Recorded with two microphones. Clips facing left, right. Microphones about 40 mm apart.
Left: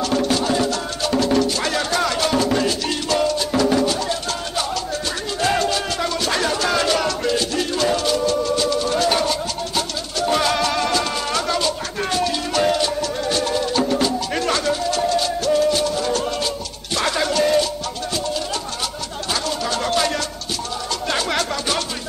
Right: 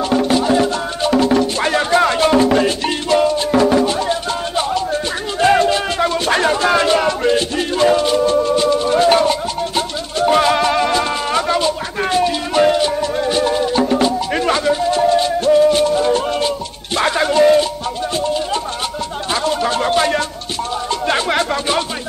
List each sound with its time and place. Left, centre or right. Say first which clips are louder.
0.0 s music: right 4 dB; right
19.3 s a sound: right 6 dB; right
20.9 s music: right 5 dB; right